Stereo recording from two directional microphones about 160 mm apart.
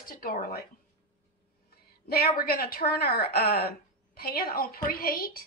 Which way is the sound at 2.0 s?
75° left (ahead or behind).